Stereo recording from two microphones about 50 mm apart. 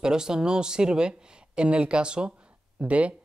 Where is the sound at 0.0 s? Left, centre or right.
Centre.